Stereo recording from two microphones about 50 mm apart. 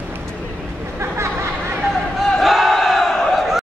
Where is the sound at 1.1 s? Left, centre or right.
Right.